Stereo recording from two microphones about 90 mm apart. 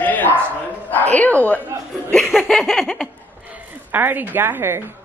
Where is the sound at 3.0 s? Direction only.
15° right (ahead or behind).